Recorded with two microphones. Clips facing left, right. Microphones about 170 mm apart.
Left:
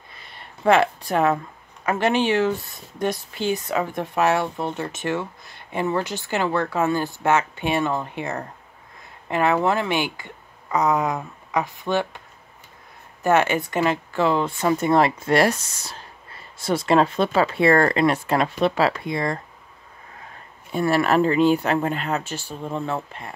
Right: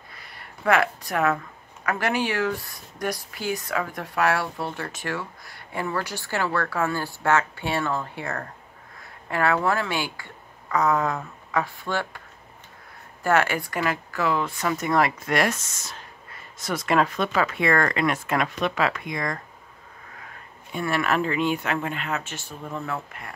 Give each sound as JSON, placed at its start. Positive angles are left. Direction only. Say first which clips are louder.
{"t": 0.1, "sound": "a sound", "louder": "left 2 dB", "side_deg": 25}
{"t": 1.9, "sound": "speech", "louder": "left 5 dB", "side_deg": 25}
{"t": 13.2, "sound": "speech", "louder": "left 3 dB", "side_deg": 20}
{"t": 20.7, "sound": "speech", "louder": "left 5 dB", "side_deg": 35}